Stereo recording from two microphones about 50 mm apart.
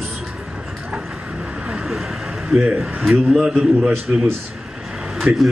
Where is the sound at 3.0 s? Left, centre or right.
Centre.